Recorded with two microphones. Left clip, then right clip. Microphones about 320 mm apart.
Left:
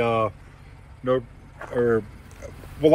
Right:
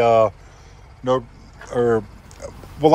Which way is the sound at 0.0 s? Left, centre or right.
Centre.